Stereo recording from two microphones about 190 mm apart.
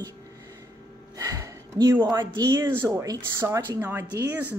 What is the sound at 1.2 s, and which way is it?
A woman's voice, 20° right (ahead or behind).